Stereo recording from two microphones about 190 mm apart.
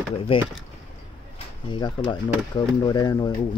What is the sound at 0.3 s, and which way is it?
Speech, 30° left (ahead or behind).